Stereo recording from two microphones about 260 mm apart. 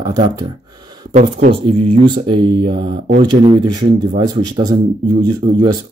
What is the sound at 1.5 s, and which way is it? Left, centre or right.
Speech, centre.